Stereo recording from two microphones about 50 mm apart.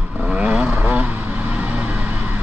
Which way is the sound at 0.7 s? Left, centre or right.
Right.